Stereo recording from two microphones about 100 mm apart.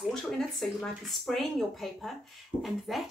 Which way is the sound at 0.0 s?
5° left (ahead or behind).